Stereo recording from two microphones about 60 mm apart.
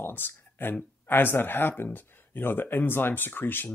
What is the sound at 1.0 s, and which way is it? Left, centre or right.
Speech, left.